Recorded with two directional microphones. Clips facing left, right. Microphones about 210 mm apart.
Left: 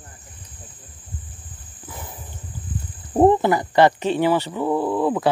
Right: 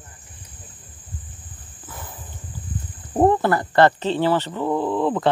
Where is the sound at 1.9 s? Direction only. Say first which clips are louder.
Left 1 dB; 15° left (ahead or behind).